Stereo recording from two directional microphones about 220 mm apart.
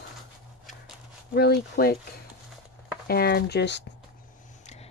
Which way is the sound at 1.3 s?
45° left (ahead or behind).